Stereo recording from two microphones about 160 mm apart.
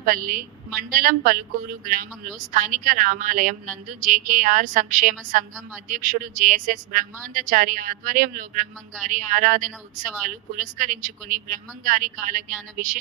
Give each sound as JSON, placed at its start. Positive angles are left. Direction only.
{"t": 0.0, "sound": "speech", "side_deg": -60}